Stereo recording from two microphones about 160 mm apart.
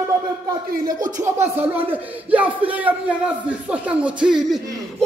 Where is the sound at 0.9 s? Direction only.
55° right (ahead or behind).